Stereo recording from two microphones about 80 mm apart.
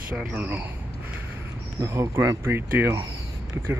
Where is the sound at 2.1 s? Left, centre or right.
Right.